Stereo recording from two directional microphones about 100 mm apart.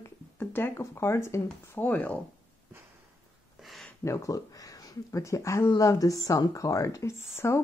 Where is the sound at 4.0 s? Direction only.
30° left (ahead or behind).